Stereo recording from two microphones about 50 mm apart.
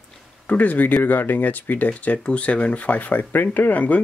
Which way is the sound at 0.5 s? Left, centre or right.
Left.